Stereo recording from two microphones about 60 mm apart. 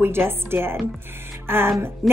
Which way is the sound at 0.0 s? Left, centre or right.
Right.